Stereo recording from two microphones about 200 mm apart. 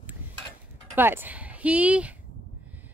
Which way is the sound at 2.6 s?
10° right (ahead or behind).